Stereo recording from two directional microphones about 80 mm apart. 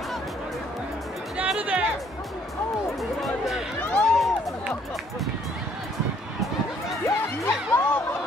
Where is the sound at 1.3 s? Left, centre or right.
Centre.